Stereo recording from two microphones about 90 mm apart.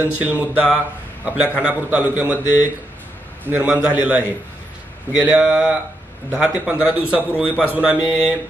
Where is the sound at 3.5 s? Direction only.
10° right (ahead or behind).